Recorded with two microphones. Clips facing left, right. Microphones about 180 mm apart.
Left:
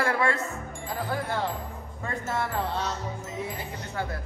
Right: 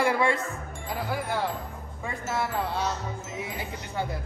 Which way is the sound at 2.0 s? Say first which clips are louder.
Even; 5° right (ahead or behind).